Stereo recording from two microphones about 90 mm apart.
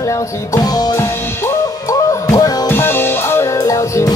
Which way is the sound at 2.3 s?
40° left (ahead or behind).